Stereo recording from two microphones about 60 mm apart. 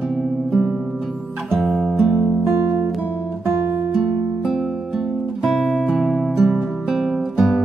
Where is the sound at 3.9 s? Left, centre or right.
Centre.